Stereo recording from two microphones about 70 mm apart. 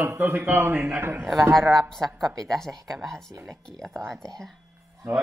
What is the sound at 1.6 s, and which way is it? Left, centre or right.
Speech, right.